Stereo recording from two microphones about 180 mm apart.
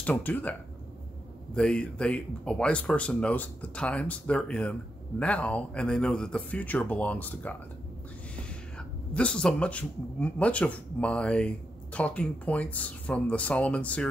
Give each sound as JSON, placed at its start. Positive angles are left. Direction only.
{"t": 0.0, "sound": "speech", "side_deg": 10}
{"t": 8.7, "sound": "speech", "side_deg": 5}